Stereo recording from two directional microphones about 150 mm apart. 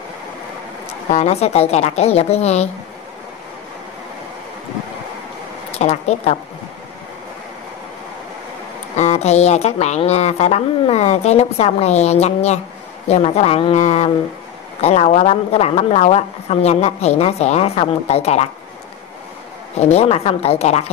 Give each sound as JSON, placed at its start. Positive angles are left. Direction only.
{"t": 1.1, "sound": "speech", "side_deg": 45}
{"t": 5.8, "sound": "speech", "side_deg": 45}
{"t": 8.9, "sound": "speech", "side_deg": 50}
{"t": 19.9, "sound": "speech", "side_deg": 45}